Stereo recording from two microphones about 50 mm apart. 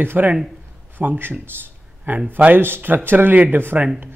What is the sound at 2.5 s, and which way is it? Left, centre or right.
Speech, right.